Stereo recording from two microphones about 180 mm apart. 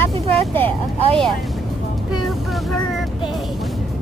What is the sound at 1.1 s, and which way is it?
Speech, 5° left (ahead or behind).